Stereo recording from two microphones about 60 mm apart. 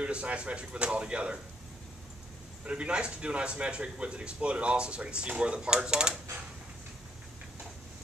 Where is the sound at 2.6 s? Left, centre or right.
Centre.